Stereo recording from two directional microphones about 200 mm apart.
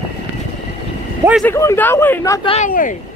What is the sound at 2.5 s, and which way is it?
Speech, 40° left (ahead or behind).